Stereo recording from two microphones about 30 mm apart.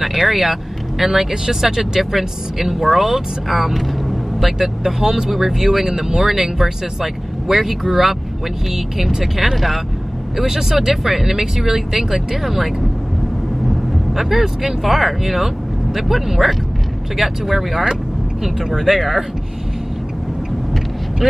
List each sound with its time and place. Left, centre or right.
0.0 s speech: centre
1.8 s speech: centre
4.6 s speech: centre